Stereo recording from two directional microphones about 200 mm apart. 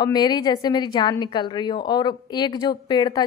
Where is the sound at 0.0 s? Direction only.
20° left (ahead or behind).